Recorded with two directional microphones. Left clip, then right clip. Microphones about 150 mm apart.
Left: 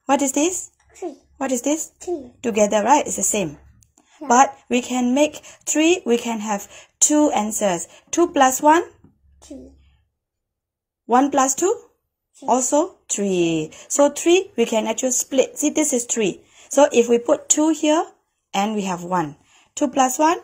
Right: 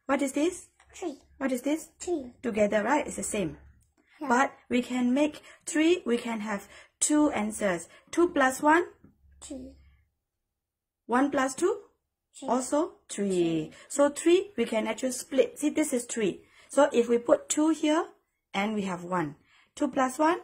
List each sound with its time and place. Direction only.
0.0 s speech: 35° left (ahead or behind)
11.1 s speech: 35° left (ahead or behind)